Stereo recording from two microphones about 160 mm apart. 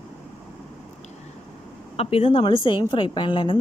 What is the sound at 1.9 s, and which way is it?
A woman's voice, 35° left (ahead or behind).